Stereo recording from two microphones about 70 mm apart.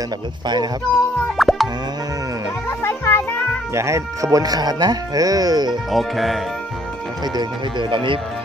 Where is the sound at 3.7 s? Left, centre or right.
Right.